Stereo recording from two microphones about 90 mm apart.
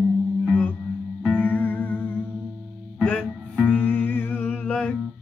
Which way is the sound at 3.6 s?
15° left (ahead or behind).